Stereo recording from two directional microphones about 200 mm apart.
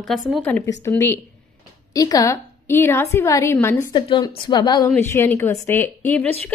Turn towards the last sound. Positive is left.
turn(degrees=10)  # may be behind; listen again after turning